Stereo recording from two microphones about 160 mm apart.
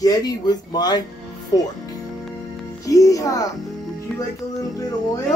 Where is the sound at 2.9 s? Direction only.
20° left (ahead or behind).